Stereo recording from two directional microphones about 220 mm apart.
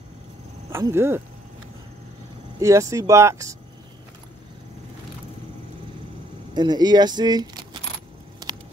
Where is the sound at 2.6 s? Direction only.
15° right (ahead or behind).